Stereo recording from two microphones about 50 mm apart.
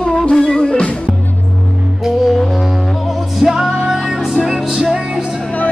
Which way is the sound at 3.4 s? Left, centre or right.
Centre.